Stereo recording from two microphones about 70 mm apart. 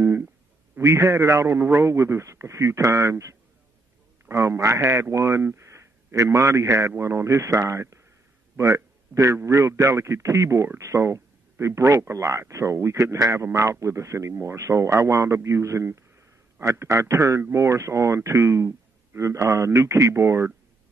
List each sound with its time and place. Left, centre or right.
0.7 s a man's voice: right